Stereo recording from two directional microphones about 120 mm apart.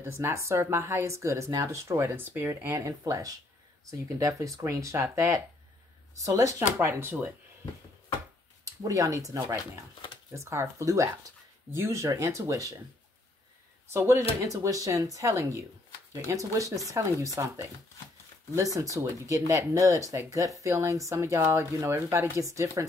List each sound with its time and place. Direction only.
0.0 s speech: 20° right (ahead or behind)
8.8 s speech: 30° right (ahead or behind)
13.8 s speech: 20° right (ahead or behind)